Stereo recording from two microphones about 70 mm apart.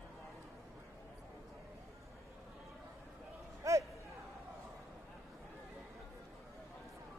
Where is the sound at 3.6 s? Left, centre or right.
Right.